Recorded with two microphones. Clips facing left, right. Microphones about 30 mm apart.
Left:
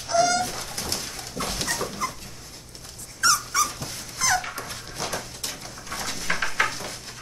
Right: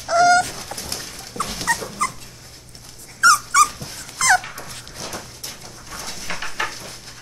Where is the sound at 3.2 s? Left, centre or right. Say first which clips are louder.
Right 8 dB; right.